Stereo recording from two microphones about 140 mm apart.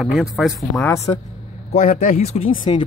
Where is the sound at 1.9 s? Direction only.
60° left (ahead or behind).